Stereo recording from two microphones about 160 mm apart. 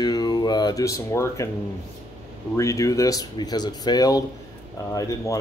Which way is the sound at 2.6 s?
20° left (ahead or behind).